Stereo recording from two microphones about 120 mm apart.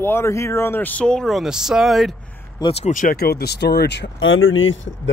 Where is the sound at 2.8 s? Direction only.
90° left.